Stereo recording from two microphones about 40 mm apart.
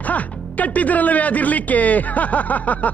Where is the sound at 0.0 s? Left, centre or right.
Left.